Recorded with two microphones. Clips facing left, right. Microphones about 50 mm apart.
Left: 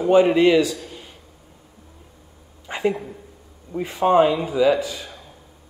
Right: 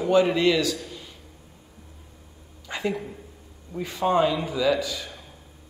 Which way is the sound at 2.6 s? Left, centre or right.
Left.